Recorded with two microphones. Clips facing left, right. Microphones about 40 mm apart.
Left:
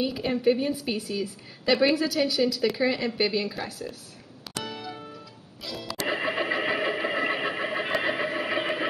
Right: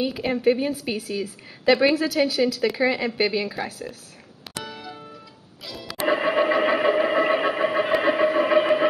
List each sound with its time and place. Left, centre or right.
0.0 s speech: centre
4.6 s music: centre
6.0 s sewing machine: centre